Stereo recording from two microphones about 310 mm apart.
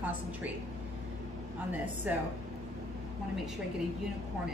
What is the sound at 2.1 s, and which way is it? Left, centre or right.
Speech, centre.